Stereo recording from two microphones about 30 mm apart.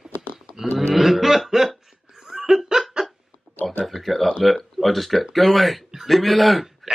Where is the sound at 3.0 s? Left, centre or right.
Right.